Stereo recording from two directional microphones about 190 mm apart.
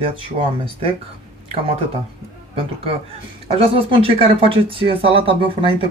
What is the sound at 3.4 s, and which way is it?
Speech, 30° right (ahead or behind).